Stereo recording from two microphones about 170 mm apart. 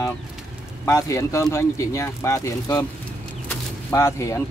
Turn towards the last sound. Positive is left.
turn(degrees=15)  # may be behind; listen again after turning